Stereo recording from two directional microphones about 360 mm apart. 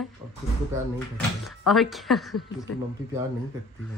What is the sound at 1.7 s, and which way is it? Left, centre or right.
Speech, centre.